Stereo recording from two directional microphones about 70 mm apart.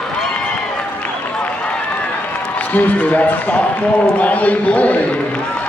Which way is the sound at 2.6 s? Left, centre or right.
Left.